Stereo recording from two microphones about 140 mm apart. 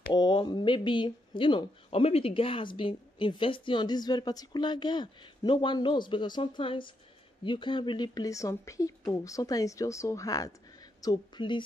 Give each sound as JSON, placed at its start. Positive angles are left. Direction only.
{"t": 0.1, "sound": "speech", "side_deg": 30}